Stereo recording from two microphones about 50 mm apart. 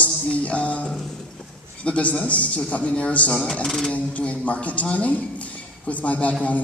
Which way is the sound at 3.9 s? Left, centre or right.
Left.